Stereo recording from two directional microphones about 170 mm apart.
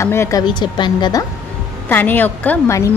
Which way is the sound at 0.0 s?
15° left (ahead or behind).